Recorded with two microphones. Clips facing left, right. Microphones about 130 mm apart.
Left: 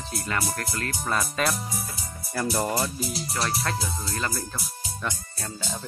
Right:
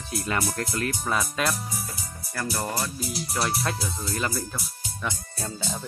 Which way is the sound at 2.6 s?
20° left (ahead or behind).